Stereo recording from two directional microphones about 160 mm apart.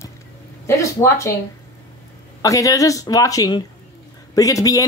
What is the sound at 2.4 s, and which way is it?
A woman's voice, 20° left (ahead or behind).